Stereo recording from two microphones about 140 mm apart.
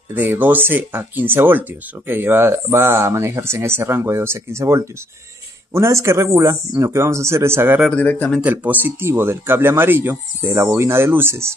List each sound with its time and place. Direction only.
0.1 s speech: 15° right (ahead or behind)
7.9 s speech: 10° left (ahead or behind)
8.4 s speech: 10° right (ahead or behind)